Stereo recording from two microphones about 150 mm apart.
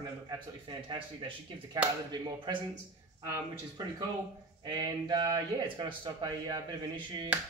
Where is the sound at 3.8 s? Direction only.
25° right (ahead or behind).